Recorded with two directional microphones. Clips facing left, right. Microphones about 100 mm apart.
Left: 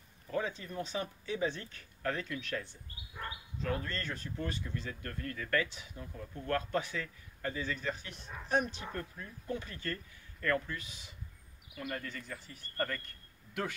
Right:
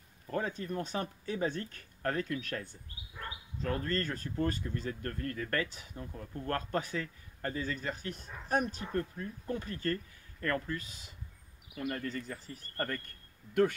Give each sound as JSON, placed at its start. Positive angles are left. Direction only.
{"t": 0.3, "sound": "speech", "side_deg": -45}